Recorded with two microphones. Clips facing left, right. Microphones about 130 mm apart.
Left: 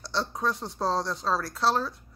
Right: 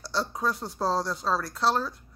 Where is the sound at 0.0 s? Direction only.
Centre (ahead or behind).